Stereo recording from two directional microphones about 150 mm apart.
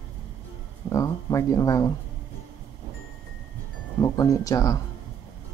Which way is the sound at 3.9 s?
20° left (ahead or behind).